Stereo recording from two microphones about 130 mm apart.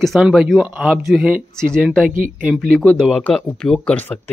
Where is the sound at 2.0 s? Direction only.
90° right.